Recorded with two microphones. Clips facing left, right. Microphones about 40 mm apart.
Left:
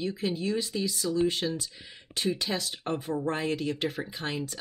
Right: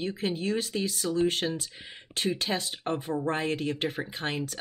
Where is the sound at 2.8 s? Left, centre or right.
Right.